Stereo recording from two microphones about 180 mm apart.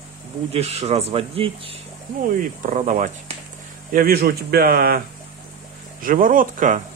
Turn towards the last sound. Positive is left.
turn(degrees=-50)  # may be behind; listen again after turning